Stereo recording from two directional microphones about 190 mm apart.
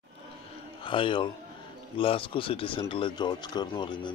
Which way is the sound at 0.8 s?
25° left (ahead or behind).